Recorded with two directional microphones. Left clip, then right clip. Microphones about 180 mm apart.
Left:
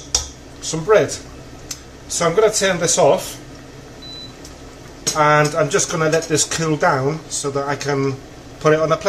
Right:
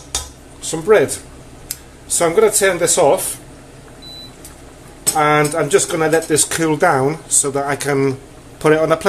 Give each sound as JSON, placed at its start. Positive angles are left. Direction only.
{"t": 0.7, "sound": "speech", "side_deg": -40}
{"t": 2.0, "sound": "speech", "side_deg": -45}
{"t": 5.1, "sound": "speech", "side_deg": -45}